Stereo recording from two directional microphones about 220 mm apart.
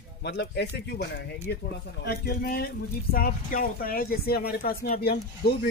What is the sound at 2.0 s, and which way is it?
Speech, 45° left (ahead or behind).